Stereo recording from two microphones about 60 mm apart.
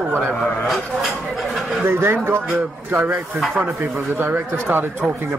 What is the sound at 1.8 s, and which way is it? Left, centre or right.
Speech, right.